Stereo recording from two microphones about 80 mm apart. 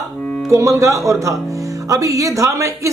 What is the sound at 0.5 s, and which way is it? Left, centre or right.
A woman's voice, right.